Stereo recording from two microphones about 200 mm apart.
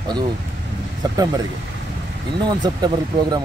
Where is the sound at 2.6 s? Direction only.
20° right (ahead or behind).